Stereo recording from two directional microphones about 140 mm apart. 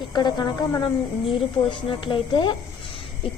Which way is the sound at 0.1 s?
30° left (ahead or behind).